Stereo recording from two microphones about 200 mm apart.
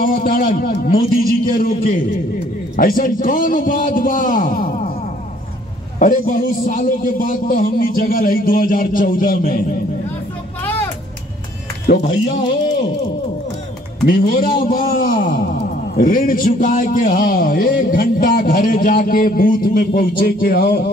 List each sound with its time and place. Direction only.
0.0 s a man's voice: 45° left (ahead or behind)
5.9 s a man's voice: 45° left (ahead or behind)
10.6 s vehicle: 10° left (ahead or behind)
11.9 s a man's voice: 50° left (ahead or behind)
14.0 s a man's voice: 45° left (ahead or behind)